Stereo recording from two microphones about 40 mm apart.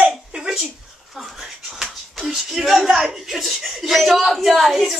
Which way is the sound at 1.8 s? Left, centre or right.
Centre.